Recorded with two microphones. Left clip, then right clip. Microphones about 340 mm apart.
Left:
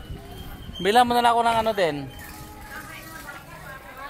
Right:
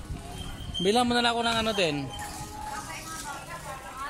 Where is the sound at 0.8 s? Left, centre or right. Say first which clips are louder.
Left 6 dB; left.